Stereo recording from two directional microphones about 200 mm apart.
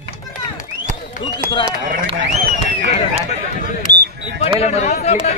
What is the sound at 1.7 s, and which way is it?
Speech, 45° right (ahead or behind).